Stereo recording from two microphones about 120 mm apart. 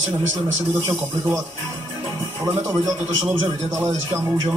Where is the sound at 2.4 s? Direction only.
30° right (ahead or behind).